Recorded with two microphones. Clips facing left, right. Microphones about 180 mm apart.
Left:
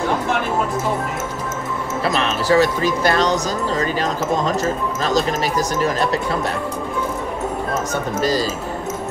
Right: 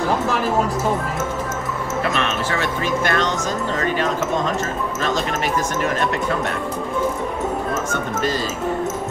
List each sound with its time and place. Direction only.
2.0 s speech: 35° left (ahead or behind)
5.8 s speech: 35° left (ahead or behind)
7.9 s speech: 40° left (ahead or behind)